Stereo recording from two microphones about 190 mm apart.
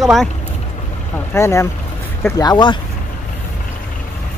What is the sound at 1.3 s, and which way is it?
Speech, 15° left (ahead or behind).